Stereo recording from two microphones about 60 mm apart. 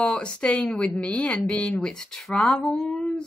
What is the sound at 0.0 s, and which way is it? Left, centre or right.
Speech, centre.